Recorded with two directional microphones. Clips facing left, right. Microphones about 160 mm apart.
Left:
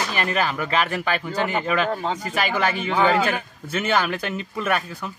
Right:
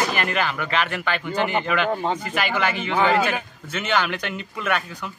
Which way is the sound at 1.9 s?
15° right (ahead or behind).